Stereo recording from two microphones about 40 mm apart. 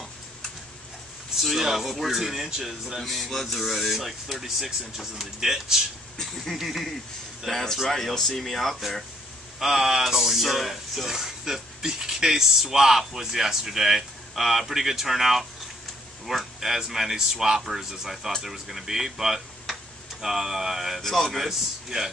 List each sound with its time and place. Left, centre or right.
1.4 s speech: centre
3.0 s speech: centre
9.6 s speech: centre
21.0 s speech: centre
21.8 s speech: centre